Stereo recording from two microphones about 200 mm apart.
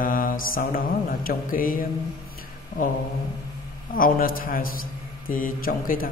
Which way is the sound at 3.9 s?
45° left (ahead or behind).